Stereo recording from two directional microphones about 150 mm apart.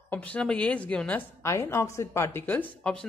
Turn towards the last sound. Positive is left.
turn(degrees=5)  # may be behind; listen again after turning